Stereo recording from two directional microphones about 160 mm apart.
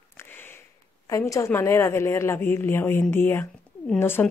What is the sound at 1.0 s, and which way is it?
A woman's voice, 20° left (ahead or behind).